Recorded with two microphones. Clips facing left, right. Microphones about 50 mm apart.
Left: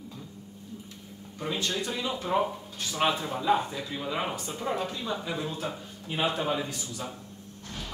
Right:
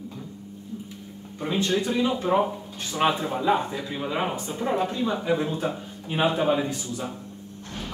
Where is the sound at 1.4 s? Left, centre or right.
Right.